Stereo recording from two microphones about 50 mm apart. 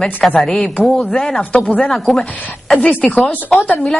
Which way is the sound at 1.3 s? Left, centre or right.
Left.